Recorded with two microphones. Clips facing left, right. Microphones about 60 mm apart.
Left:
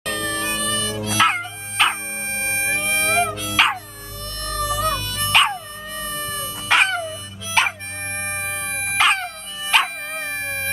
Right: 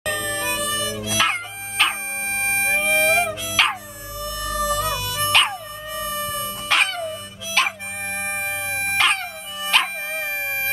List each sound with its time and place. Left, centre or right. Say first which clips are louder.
0.0 s music: even; centre
2.2 s music: right 2 dB; centre
2.7 s dog: right 2 dB; centre
4.2 s music: right 2 dB; centre
5.3 s dog: left 3 dB; centre
6.7 s dog: left 3 dB; centre
8.1 s music: right 1 dB; centre
8.9 s dog: left 3 dB; centre